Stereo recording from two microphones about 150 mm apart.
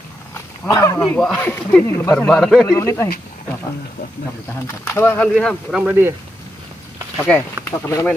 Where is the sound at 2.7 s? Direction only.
20° left (ahead or behind).